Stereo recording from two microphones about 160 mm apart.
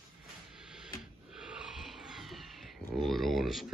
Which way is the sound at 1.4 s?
5° right (ahead or behind).